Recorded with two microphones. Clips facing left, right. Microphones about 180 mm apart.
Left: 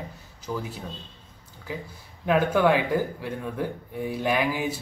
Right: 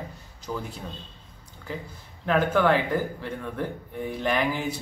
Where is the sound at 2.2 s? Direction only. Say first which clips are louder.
Left 1 dB; 10° left (ahead or behind).